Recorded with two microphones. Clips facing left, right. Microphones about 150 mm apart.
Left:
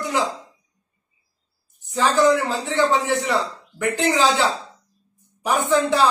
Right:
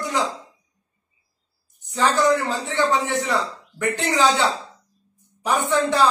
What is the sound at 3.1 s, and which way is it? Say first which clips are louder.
Speech: left 2 dB; centre (ahead or behind).